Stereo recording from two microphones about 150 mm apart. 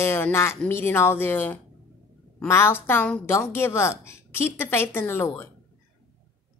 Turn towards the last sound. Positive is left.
turn(degrees=15)  # may be behind; listen again after turning